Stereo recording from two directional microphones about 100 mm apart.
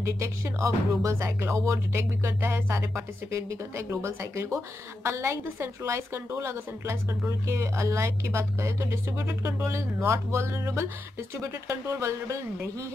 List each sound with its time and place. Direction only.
0.0 s speech: 30° right (ahead or behind)